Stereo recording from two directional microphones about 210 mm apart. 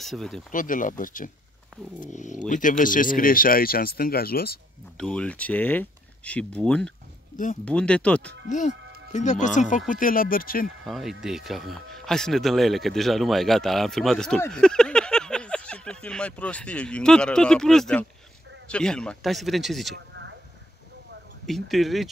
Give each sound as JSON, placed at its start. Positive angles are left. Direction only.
{"t": 0.0, "sound": "speech", "side_deg": 0}
{"t": 0.5, "sound": "speech", "side_deg": 40}
{"t": 4.9, "sound": "speech", "side_deg": 5}
{"t": 8.5, "sound": "speech", "side_deg": 35}
{"t": 10.9, "sound": "speech", "side_deg": 0}
{"t": 21.5, "sound": "speech", "side_deg": 0}